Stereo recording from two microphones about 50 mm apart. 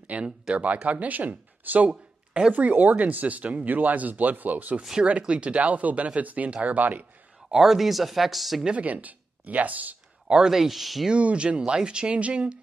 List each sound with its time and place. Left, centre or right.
0.0 s a sound: right
0.8 s speech: right
1.9 s a sound: centre
2.5 s speech: right
7.5 s speech: centre
8.6 s speech: right
10.3 s speech: centre
11.1 s speech: right